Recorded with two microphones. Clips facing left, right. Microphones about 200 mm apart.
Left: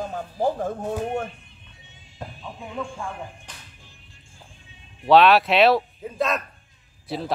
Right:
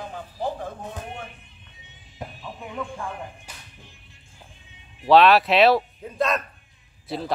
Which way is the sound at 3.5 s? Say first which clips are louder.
Even; 10° right (ahead or behind).